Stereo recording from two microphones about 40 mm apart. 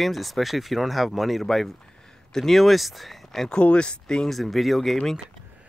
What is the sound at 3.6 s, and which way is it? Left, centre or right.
Speech, left.